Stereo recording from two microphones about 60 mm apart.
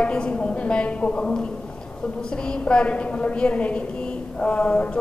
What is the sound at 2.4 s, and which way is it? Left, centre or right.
A woman's voice, centre.